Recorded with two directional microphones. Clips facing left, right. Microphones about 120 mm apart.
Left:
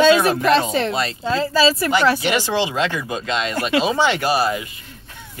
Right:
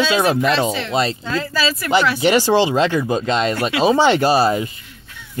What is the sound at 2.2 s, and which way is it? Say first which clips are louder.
Speech: right 6 dB; 35° right (ahead or behind).